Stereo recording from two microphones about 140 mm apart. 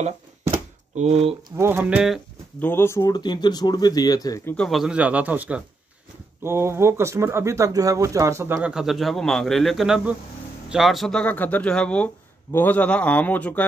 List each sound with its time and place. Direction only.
0.9 s speech: 50° right (ahead or behind)
1.6 s speech: 15° right (ahead or behind)
2.6 s speech: 15° left (ahead or behind)
4.6 s speech: 5° right (ahead or behind); by 8.5 s 20° right (ahead or behind)
8.5 s a man's voice: 5° right (ahead or behind)